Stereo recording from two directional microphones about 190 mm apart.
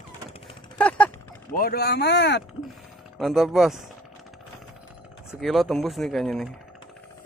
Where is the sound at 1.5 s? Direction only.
50° left (ahead or behind).